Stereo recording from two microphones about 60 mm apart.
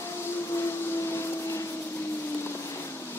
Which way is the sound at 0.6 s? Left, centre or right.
Left.